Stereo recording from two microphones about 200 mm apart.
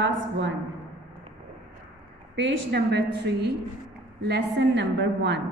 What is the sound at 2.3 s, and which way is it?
A woman's voice, 60° right (ahead or behind).